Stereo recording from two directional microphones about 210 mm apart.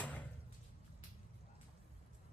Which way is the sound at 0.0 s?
5° left (ahead or behind).